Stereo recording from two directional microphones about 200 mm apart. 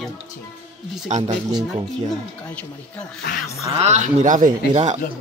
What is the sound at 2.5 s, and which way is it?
Speech, 5° left (ahead or behind).